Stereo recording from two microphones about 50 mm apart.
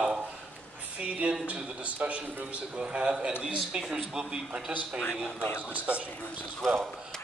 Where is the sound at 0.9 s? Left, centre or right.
Right.